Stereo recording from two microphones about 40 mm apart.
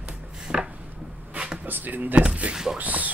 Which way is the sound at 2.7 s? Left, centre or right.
Right.